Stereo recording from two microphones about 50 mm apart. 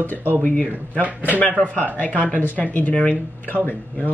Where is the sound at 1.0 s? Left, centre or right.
Right.